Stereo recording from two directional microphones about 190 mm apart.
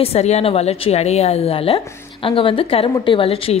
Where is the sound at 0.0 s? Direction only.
35° left (ahead or behind).